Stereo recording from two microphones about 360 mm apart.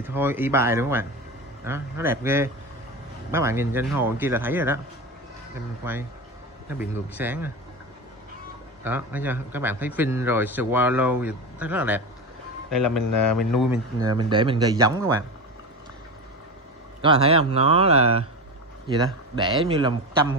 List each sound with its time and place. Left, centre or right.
0.0 s speech: centre
6.7 s speech: centre
8.8 s speech: centre
13.1 s a man's voice: left
13.5 s speech: centre
17.0 s speech: centre
19.3 s speech: centre